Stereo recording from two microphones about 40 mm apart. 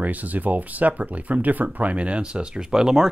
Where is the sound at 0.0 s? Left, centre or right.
Right.